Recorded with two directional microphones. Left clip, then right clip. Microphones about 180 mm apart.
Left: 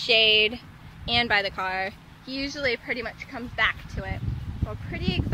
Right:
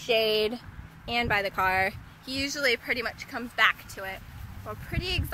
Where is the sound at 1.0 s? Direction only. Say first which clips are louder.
Left 4 dB; 15° right (ahead or behind).